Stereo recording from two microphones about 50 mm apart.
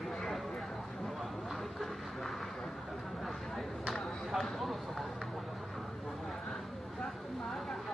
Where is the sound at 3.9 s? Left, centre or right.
Centre.